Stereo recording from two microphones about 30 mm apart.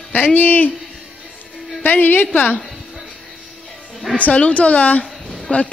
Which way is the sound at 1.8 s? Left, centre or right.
Left.